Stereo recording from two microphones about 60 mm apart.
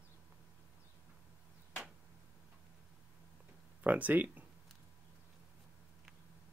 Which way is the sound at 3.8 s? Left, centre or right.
Right.